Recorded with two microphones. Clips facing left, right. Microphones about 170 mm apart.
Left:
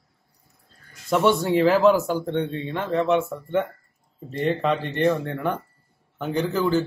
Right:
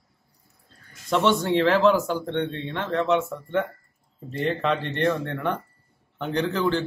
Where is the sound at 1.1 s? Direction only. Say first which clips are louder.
Left 2 dB; 10° left (ahead or behind).